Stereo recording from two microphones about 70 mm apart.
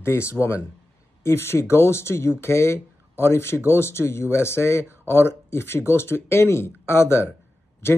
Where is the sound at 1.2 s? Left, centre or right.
Left.